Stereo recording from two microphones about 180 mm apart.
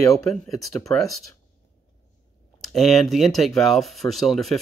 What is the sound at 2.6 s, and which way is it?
Speech, centre (ahead or behind).